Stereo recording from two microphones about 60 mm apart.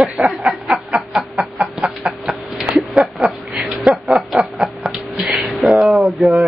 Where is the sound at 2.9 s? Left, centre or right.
Centre.